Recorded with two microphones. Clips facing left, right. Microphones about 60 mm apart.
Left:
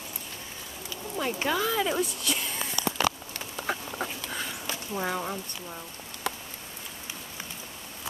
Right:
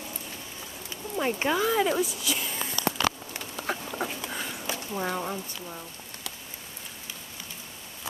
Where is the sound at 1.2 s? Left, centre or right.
Centre.